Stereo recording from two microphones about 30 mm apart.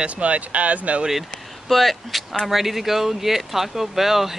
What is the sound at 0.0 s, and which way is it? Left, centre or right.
Speech, right.